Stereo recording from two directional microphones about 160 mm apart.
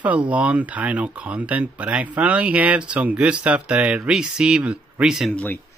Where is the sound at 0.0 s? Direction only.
10° right (ahead or behind).